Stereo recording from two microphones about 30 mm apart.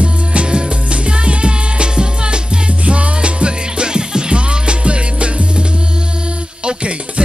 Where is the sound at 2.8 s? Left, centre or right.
Right.